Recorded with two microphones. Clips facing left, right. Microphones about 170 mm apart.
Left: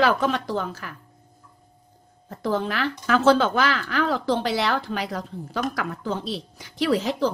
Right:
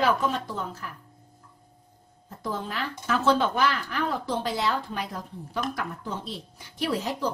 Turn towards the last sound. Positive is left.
turn(degrees=90)